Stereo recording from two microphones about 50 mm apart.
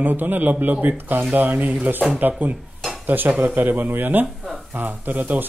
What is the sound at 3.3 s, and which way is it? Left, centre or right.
Speech, right.